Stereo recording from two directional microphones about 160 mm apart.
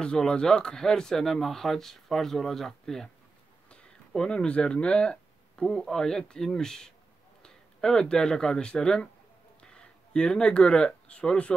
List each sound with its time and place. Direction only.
0.0 s speech: 5° left (ahead or behind)